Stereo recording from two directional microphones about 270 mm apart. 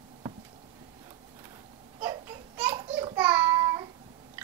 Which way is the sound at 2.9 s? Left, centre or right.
Centre.